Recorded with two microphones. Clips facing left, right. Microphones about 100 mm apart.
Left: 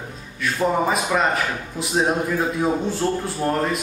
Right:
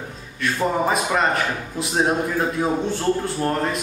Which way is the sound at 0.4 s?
Centre (ahead or behind).